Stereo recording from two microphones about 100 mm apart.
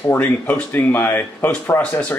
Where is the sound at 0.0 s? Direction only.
20° left (ahead or behind).